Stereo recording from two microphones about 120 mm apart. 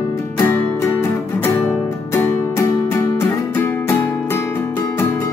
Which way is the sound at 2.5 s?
20° left (ahead or behind).